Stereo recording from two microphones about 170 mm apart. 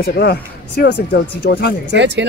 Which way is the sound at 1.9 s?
90° right.